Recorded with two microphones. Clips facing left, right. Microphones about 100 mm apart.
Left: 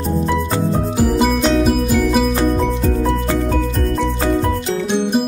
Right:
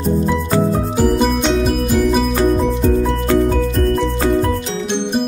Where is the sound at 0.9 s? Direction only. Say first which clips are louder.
Even; centre (ahead or behind).